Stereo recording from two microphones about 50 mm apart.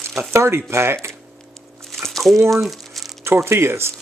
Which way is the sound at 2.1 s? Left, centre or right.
Centre.